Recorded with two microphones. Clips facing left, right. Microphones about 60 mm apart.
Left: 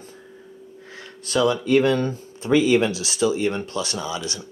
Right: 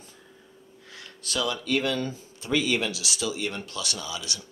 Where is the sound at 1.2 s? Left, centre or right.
Left.